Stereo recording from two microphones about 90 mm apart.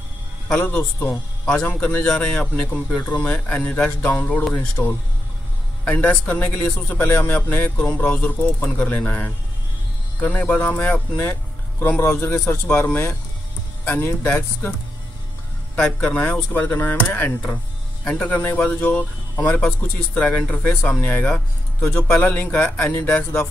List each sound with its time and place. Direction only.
0.6 s speech: 15° left (ahead or behind)
4.8 s speech: 30° left (ahead or behind)
5.9 s speech: 20° left (ahead or behind)
16.0 s speech: 20° left (ahead or behind)